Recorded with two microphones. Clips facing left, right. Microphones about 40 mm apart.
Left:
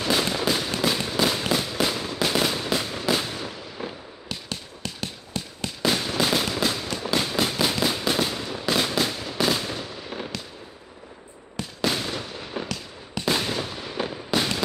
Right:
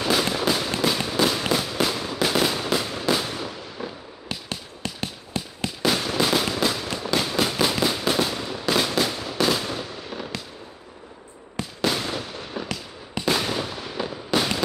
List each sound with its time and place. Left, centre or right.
0.0 s fireworks: centre
4.5 s a sound: right
5.8 s fireworks: centre
11.8 s fireworks: centre
13.2 s a sound: centre
14.1 s fireworks: centre